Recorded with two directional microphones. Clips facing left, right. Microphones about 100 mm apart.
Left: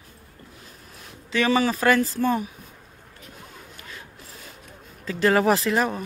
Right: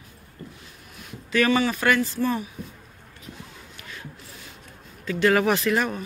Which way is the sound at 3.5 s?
35° left (ahead or behind).